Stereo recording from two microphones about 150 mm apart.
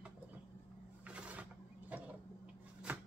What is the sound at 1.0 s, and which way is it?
Mechanisms, 10° right (ahead or behind).